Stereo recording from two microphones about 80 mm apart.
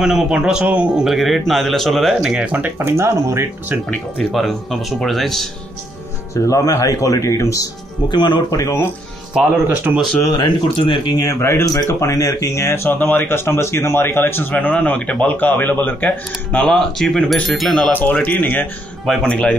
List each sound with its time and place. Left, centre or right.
0.0 s speech: centre
1.0 s speech: centre
2.3 s speech: centre; by 3.4 s right
4.2 s speech: centre
6.3 s speech: left
8.1 s speech: left
8.5 s speech: left
9.3 s speech: centre
10.3 s speech: left
11.1 s speech: left; by 16.6 s centre
16.6 s speech: centre
18.2 s speech: left